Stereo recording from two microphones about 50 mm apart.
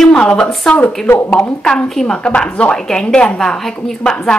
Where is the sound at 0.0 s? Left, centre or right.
Left.